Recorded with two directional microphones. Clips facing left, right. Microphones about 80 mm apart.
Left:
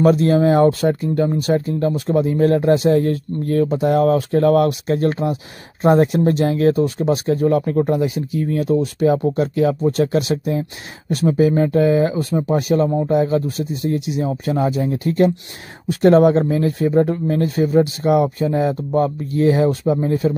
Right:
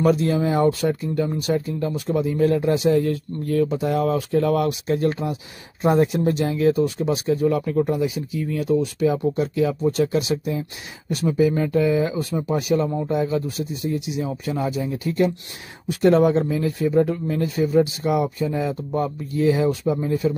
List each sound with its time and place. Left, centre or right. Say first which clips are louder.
0.0 s speech: left 5 dB; left